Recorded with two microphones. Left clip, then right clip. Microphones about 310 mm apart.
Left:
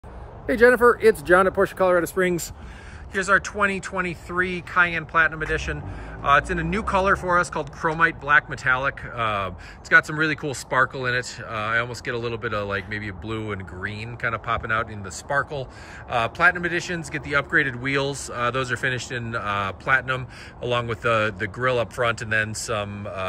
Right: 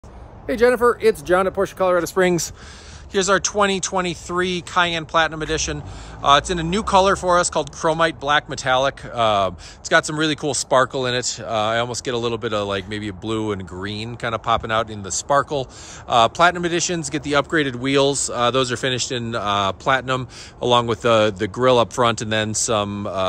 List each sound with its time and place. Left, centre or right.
0.5 s speech: centre
2.1 s speech: right
3.2 s speech: centre